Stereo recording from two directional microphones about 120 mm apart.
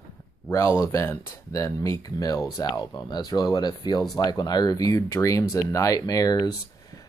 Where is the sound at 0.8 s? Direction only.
20° left (ahead or behind).